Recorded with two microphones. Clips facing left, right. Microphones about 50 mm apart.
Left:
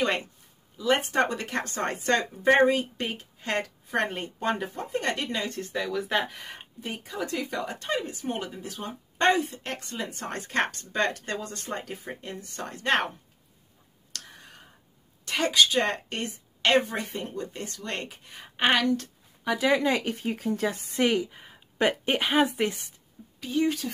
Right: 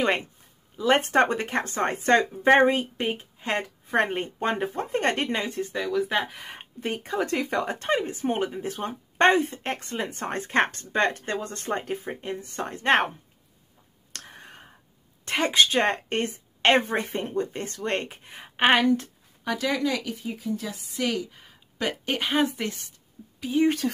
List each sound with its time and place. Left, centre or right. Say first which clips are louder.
0.0 s speech: right 2 dB; right
0.7 s speech: right 4 dB; right
1.2 s speech: right 4 dB; right
5.5 s speech: right 3 dB; centre
6.8 s speech: right 6 dB; right
14.1 s whispering: right 2 dB; right
15.2 s speech: right 1 dB; right
19.7 s speech: left 4 dB; left
20.2 s speech: left 3 dB; left
21.1 s speech: left 3 dB; centre
21.7 s speech: left 4 dB; left
22.1 s speech: right 2 dB; centre
23.2 s a sound: right 2 dB; left